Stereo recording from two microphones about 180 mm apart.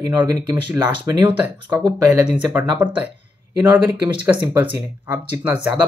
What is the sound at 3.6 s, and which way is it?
Speech, 10° right (ahead or behind).